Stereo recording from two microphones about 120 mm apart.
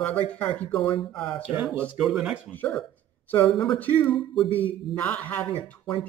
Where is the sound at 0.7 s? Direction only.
50° left (ahead or behind).